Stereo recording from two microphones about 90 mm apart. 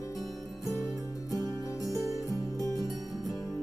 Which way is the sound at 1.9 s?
40° right (ahead or behind).